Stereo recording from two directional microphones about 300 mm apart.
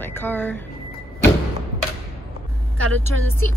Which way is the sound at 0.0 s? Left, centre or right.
Centre.